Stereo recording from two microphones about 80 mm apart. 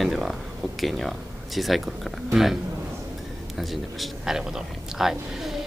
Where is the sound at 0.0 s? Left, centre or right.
Centre.